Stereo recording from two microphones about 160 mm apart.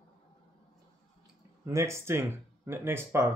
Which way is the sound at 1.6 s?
15° right (ahead or behind).